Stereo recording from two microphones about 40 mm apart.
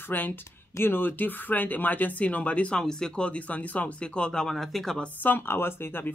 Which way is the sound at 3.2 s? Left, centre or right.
Left.